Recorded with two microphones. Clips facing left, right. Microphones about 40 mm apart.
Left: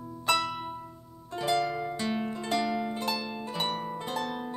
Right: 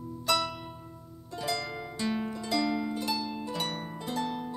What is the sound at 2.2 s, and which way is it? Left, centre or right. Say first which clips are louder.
Music: even; left.